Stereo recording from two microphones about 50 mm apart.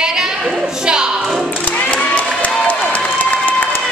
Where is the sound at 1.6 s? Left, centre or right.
Left.